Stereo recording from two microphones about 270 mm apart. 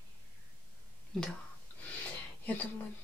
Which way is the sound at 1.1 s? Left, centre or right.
Centre.